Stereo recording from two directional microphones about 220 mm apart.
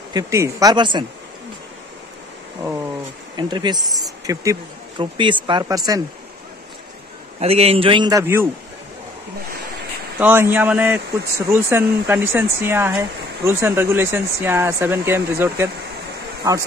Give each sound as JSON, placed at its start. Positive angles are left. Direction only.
{"t": 0.1, "sound": "speech", "side_deg": -15}
{"t": 3.3, "sound": "a man's voice", "side_deg": -20}
{"t": 7.3, "sound": "a man's voice", "side_deg": -25}
{"t": 10.1, "sound": "speech", "side_deg": -10}